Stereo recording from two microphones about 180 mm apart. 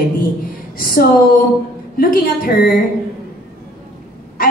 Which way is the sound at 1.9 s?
55° left (ahead or behind).